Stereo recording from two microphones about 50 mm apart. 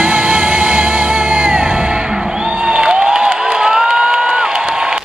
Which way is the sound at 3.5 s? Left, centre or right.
Centre.